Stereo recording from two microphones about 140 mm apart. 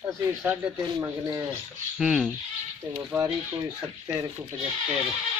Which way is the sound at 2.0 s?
5° right (ahead or behind).